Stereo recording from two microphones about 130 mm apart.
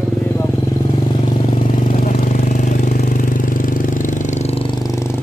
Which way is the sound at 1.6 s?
75° left (ahead or behind).